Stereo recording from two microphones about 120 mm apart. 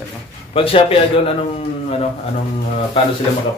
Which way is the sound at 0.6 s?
50° left (ahead or behind).